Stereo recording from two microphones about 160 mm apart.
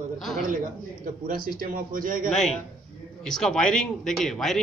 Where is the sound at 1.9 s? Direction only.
60° right (ahead or behind).